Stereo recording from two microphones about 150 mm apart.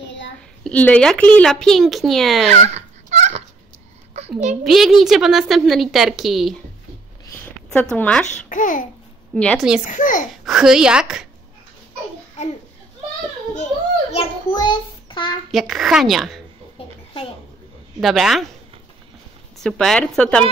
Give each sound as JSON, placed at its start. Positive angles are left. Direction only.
{"t": 0.7, "sound": "a woman's voice", "side_deg": 10}
{"t": 2.5, "sound": "dog", "side_deg": -50}
{"t": 4.6, "sound": "a woman's voice", "side_deg": 0}
{"t": 7.3, "sound": "a sound", "side_deg": 10}
{"t": 8.3, "sound": "a child's voice", "side_deg": 60}
{"t": 9.3, "sound": "a woman's voice", "side_deg": 5}
{"t": 9.8, "sound": "a child's voice", "side_deg": 60}
{"t": 10.4, "sound": "a woman's voice", "side_deg": -5}
{"t": 14.5, "sound": "a child's voice", "side_deg": 30}
{"t": 15.5, "sound": "a woman's voice", "side_deg": 0}
{"t": 18.0, "sound": "a woman's voice", "side_deg": 0}
{"t": 19.6, "sound": "a woman's voice", "side_deg": 5}